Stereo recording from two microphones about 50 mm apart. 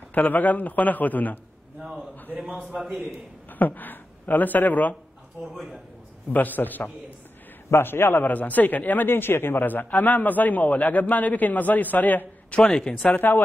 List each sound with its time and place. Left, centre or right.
0.1 s a man's voice: left
2.6 s a man's voice: centre
3.5 s speech: left
5.5 s a man's voice: centre
6.3 s a man's voice: left
7.7 s a man's voice: left
8.3 s a man's voice: left
12.6 s speech: centre
13.0 s a man's voice: left